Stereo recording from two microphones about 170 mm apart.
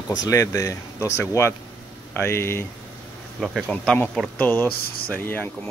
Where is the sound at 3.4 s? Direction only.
Centre (ahead or behind).